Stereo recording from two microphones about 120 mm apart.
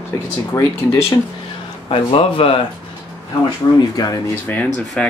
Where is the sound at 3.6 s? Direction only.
30° left (ahead or behind).